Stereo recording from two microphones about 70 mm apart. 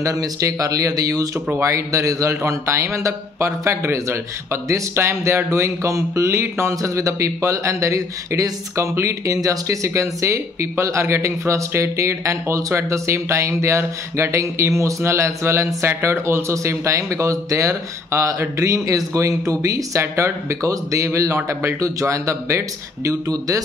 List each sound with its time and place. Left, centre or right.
0.0 s speech: right
1.6 s a sound: right
23.2 s speech: right